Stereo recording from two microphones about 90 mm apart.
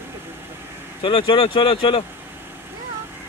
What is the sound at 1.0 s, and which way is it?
Speech, 70° left (ahead or behind).